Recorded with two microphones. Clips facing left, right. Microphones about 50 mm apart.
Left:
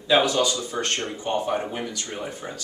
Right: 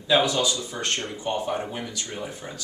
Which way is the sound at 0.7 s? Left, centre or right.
Left.